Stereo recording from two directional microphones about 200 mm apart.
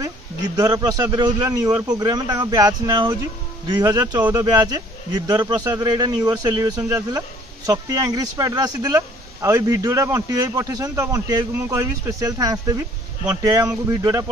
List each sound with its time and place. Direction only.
0.6 s a man's voice: 20° right (ahead or behind)